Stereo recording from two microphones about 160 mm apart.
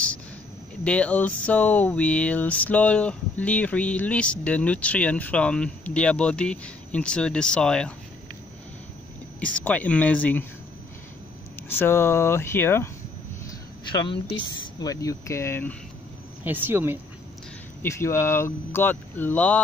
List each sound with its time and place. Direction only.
0.8 s speech: 10° left (ahead or behind)
9.4 s speech: 10° left (ahead or behind)
11.7 s speech: 15° left (ahead or behind)
13.9 s a woman's voice: 30° left (ahead or behind); by 15.7 s 15° left (ahead or behind)
16.4 s speech: 10° right (ahead or behind)
17.8 s speech: 15° left (ahead or behind)